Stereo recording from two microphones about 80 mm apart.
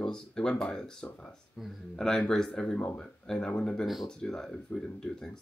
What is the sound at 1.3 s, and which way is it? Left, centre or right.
Speech, centre.